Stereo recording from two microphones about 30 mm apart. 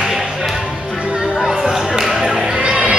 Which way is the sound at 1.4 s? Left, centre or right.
Centre.